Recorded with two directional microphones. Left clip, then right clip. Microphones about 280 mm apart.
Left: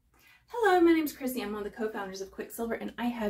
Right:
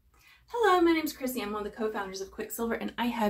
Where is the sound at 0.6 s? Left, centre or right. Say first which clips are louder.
Even; centre.